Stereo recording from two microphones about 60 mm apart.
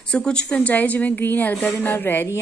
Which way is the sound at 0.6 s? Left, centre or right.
Left.